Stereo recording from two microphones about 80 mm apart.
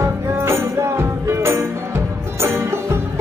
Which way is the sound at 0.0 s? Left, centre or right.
Right.